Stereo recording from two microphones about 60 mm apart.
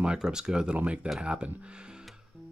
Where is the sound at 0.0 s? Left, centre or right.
Centre.